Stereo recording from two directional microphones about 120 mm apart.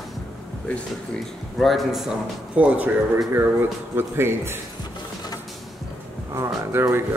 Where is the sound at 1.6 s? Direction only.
Centre (ahead or behind).